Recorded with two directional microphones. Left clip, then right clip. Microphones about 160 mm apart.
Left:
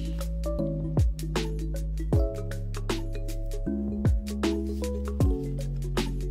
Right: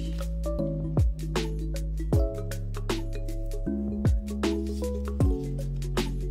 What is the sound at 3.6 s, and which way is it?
Music, centre (ahead or behind).